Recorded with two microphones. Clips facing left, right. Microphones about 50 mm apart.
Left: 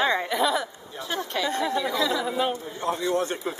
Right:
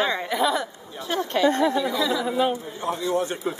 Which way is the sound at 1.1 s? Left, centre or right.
Right.